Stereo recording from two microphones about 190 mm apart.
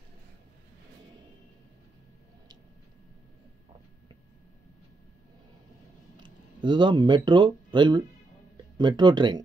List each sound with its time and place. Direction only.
6.1 s speech: 25° right (ahead or behind)